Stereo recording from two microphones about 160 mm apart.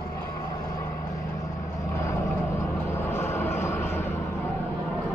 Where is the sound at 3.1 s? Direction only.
15° left (ahead or behind).